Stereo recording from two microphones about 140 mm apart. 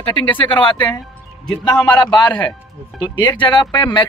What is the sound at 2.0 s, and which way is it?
Speech, 30° left (ahead or behind).